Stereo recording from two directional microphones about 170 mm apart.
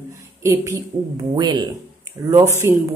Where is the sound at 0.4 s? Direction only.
15° right (ahead or behind).